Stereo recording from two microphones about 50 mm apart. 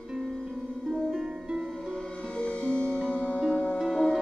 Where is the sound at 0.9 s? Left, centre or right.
Centre.